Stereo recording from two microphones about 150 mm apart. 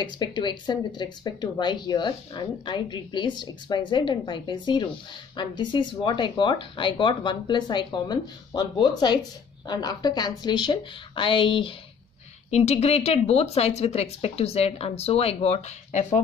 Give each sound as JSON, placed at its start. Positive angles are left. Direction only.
{"t": 0.0, "sound": "speech", "side_deg": 30}
{"t": 12.4, "sound": "speech", "side_deg": 45}